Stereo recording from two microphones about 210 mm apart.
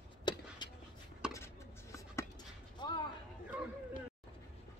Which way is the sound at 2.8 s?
20° left (ahead or behind).